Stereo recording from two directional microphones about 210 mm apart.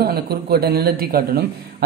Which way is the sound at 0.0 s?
50° right (ahead or behind).